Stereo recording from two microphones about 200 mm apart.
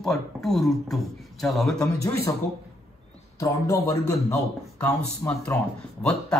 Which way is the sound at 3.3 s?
15° left (ahead or behind).